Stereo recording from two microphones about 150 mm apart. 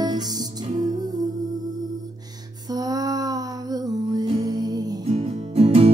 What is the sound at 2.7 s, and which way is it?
Music, 25° right (ahead or behind).